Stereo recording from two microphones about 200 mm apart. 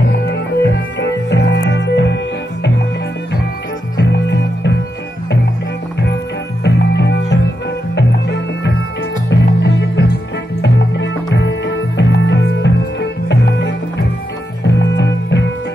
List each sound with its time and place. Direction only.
0.2 s music: 55° left (ahead or behind)
3.9 s music: 60° left (ahead or behind)
6.6 s music: 60° left (ahead or behind)
11.3 s music: 65° left (ahead or behind)